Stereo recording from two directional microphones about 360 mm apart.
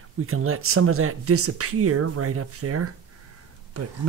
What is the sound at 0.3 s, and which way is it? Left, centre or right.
Speech, right.